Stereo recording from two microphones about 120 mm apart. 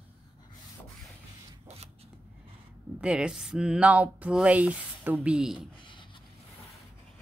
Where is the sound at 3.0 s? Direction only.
10° right (ahead or behind).